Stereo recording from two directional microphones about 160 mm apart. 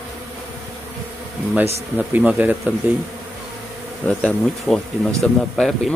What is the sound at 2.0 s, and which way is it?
Speech, 10° right (ahead or behind).